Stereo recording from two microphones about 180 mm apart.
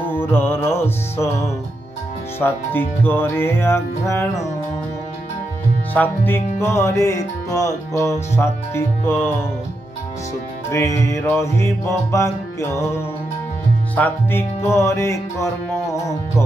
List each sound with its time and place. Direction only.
0.0 s speech: 10° left (ahead or behind)
5.9 s speech: 10° left (ahead or behind)
10.7 s speech: 15° left (ahead or behind)
13.9 s speech: 10° left (ahead or behind)
15.9 s music: 15° left (ahead or behind)